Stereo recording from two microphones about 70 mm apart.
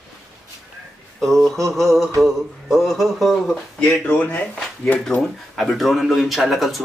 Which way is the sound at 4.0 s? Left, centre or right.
Left.